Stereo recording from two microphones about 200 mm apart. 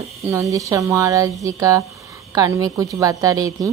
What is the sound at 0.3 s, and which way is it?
Speech, 15° right (ahead or behind).